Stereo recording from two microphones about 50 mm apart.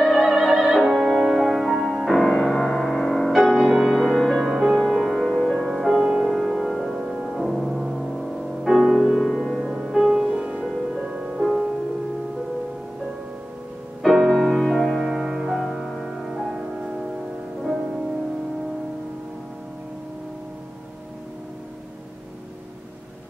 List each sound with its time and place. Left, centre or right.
0.1 s music: centre
4.4 s music: centre
5.6 s music: centre
9.3 s music: centre
9.6 s music: centre
11.4 s music: centre
14.0 s music: centre